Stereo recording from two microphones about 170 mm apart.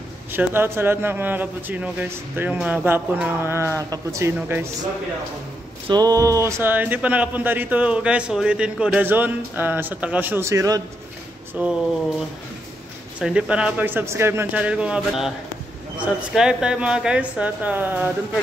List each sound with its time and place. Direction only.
0.3 s speech: 15° right (ahead or behind)
5.9 s speech: 20° right (ahead or behind)
13.2 s speech: 5° right (ahead or behind)